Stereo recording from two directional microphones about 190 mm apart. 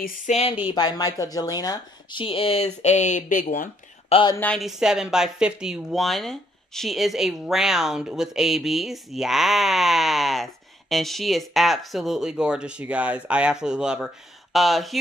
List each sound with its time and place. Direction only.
0.0 s speech: 50° left (ahead or behind)
0.7 s a woman's voice: 20° left (ahead or behind); by 3.7 s 45° left (ahead or behind)
4.1 s speech: 25° left (ahead or behind)
4.4 s a woman's voice: 5° left (ahead or behind)